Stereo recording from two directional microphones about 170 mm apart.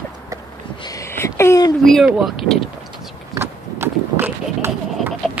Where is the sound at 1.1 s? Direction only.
15° left (ahead or behind).